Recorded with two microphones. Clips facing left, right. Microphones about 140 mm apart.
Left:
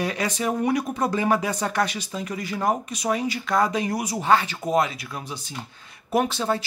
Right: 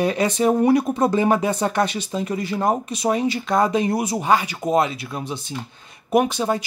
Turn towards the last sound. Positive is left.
turn(degrees=-15)  # may be behind; listen again after turning